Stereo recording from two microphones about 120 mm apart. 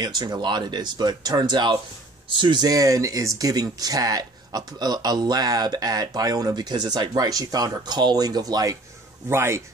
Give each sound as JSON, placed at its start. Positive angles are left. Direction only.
{"t": 0.0, "sound": "speech", "side_deg": -35}
{"t": 9.3, "sound": "speech", "side_deg": -20}